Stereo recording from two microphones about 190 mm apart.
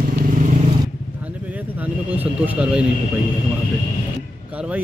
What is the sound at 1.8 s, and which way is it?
Speech, 10° right (ahead or behind).